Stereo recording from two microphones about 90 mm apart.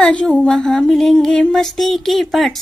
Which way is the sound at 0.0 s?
10° left (ahead or behind).